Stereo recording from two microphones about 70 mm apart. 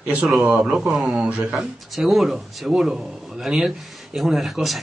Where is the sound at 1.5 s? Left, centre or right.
Centre.